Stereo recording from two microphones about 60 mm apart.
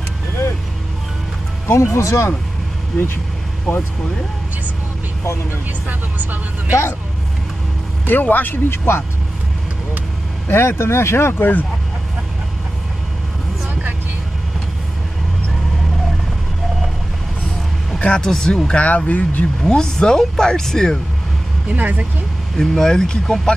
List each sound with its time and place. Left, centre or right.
1.7 s speech: left
5.9 s speech: right
8.1 s speech: left
8.6 s speech: left
10.5 s speech: left
17.9 s speech: centre
18.7 s speech: left
19.6 s speech: centre
21.6 s speech: right
22.6 s speech: centre